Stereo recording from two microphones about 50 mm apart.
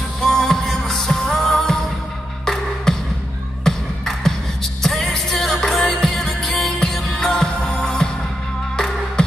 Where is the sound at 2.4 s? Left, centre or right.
Centre.